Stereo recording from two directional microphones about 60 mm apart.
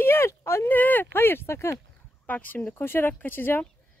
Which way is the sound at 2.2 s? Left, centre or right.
Left.